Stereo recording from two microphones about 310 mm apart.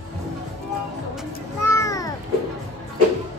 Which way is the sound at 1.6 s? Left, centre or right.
Centre.